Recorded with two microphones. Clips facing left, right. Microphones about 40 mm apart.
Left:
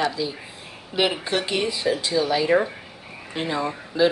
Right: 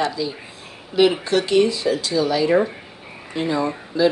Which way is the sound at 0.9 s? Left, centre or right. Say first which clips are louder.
Right 6 dB; centre.